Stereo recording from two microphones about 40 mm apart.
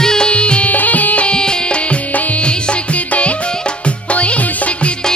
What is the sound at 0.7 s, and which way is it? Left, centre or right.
Music, left.